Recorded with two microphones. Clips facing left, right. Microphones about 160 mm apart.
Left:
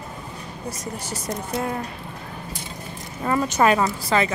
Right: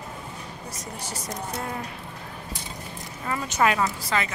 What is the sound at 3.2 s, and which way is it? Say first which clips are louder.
A woman's voice: left 5 dB; 40° left (ahead or behind).